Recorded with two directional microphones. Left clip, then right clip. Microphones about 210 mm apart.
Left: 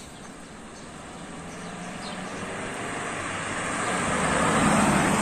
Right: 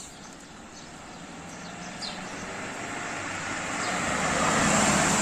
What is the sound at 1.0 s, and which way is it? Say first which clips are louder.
Vehicle: left 3 dB; 25° left (ahead or behind).